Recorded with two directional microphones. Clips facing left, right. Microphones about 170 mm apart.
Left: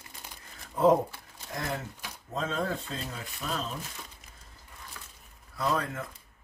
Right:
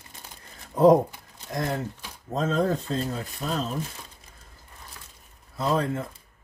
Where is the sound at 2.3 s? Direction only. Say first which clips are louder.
Right 7 dB; 40° right (ahead or behind).